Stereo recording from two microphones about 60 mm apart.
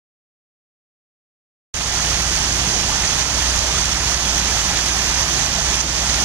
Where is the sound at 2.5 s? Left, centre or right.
Right.